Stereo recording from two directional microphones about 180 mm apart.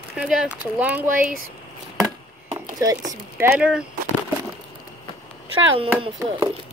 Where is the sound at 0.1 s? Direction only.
5° right (ahead or behind).